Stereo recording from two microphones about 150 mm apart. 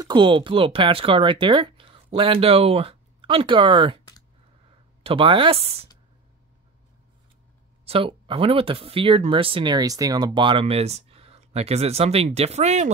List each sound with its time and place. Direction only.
0.0 s speech: 30° right (ahead or behind)
5.0 s speech: 35° right (ahead or behind)
7.8 s speech: 40° right (ahead or behind)